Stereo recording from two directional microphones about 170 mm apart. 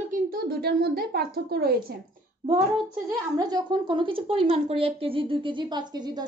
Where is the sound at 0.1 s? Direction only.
60° right (ahead or behind).